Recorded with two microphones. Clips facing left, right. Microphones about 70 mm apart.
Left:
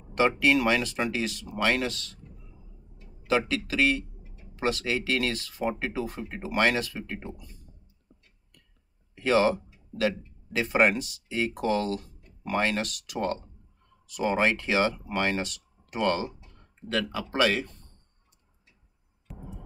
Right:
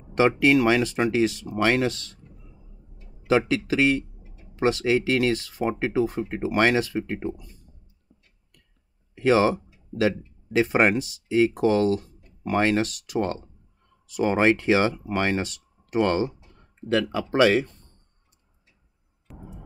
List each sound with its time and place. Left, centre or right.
0.4 s speech: right
3.3 s speech: right
9.1 s speech: centre
19.3 s a sound: centre